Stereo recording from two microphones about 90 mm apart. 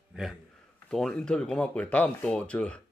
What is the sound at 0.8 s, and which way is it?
Speech, 10° left (ahead or behind).